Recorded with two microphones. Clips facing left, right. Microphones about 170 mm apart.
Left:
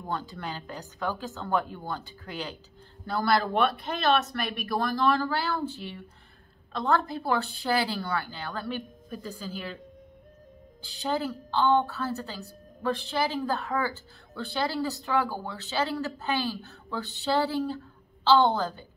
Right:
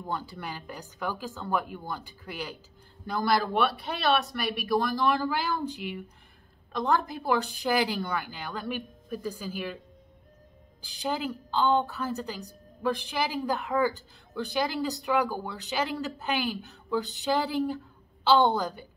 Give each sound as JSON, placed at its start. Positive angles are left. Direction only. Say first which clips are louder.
{"t": 0.1, "sound": "a woman's voice", "louder": "left 2 dB", "side_deg": -10}
{"t": 10.8, "sound": "a woman's voice", "louder": "left 2 dB", "side_deg": -10}